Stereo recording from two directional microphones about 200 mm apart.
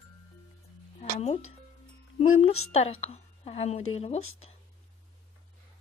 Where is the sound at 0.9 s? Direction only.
35° left (ahead or behind).